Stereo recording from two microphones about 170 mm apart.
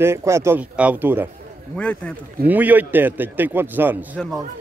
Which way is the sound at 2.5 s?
10° right (ahead or behind).